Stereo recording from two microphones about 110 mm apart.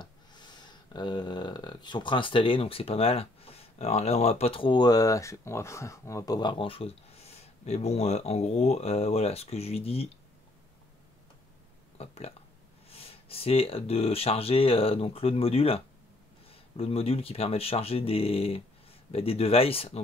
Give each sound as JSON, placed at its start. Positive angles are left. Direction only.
{"t": 0.0, "sound": "a sound", "side_deg": 40}
{"t": 6.5, "sound": "speech", "side_deg": 55}
{"t": 12.0, "sound": "speech", "side_deg": 70}